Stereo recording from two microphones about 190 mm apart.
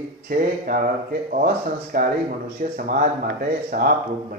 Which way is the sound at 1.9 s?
50° right (ahead or behind).